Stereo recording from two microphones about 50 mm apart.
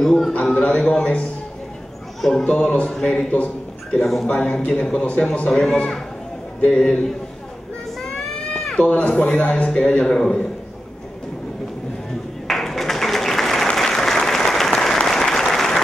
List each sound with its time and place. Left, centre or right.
0.0 s speech: centre
0.3 s speech: centre
2.4 s speech: centre
4.3 s speech: left
8.0 s a sound: centre
8.7 s speech: left
12.4 s a sound: centre
13.7 s applause: centre